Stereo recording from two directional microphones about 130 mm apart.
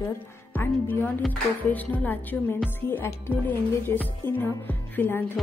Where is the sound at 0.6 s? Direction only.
15° left (ahead or behind).